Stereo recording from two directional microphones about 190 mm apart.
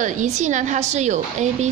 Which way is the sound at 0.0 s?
40° right (ahead or behind).